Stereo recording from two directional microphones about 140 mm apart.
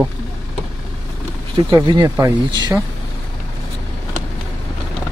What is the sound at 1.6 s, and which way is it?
Speech, 30° right (ahead or behind).